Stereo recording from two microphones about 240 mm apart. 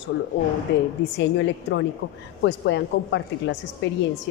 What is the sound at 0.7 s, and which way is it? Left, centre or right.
A woman's voice, left.